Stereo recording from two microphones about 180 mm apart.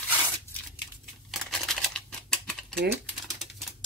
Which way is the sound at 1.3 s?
Centre (ahead or behind).